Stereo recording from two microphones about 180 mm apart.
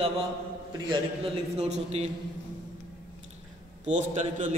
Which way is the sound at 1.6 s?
35° right (ahead or behind).